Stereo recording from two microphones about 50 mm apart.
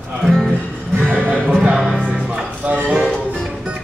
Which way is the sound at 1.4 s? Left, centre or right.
Right.